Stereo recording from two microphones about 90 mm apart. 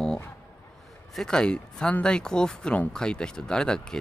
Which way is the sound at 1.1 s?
5° left (ahead or behind).